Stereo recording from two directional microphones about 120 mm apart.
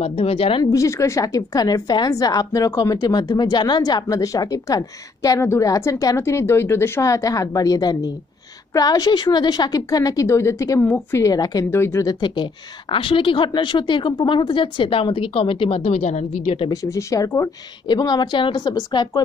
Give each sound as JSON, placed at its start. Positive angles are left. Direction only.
{"t": 0.0, "sound": "speech", "side_deg": 55}
{"t": 0.7, "sound": "a woman's voice", "side_deg": 25}
{"t": 12.9, "sound": "speech", "side_deg": 45}
{"t": 16.7, "sound": "a woman's voice", "side_deg": 30}
{"t": 17.8, "sound": "a woman's voice", "side_deg": 35}